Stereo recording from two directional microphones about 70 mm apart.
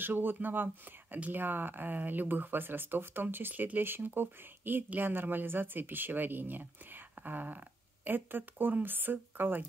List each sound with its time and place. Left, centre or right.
0.0 s speech: right